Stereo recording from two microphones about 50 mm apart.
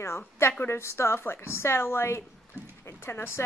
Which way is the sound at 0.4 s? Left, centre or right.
Left.